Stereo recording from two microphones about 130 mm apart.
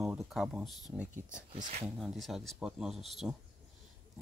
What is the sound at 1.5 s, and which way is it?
Speech, 75° right (ahead or behind).